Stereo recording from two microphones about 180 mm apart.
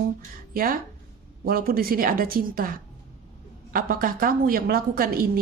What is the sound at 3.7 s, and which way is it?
A woman's voice, 50° right (ahead or behind).